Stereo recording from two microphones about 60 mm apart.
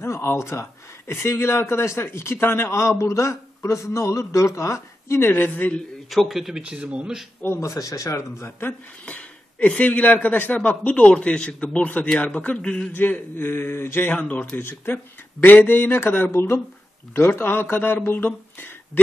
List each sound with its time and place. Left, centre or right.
0.0 s speech: left
5.3 s speech: left
6.0 s a man's voice: centre
6.6 s speech: centre
7.6 s speech: left
8.4 s speech: left
9.0 s a sound: left
9.7 s a man's voice: left
12.9 s speech: left
14.1 s a man's voice: left
14.6 s speech: left